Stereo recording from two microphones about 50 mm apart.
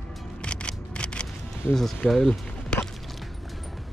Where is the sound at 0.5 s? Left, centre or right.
Left.